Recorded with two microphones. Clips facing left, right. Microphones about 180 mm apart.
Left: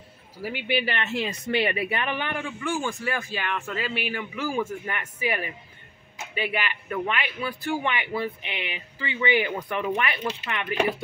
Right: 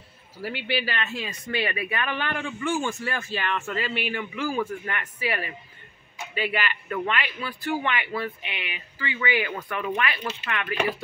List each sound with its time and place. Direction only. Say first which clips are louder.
0.4 s speech: left 1 dB; 15° left (ahead or behind)